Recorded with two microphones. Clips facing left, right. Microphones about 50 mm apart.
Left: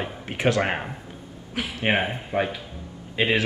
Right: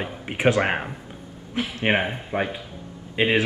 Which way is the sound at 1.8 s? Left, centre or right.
Right.